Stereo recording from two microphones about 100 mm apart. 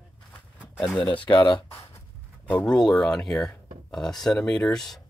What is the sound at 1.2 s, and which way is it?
Speech, 50° left (ahead or behind).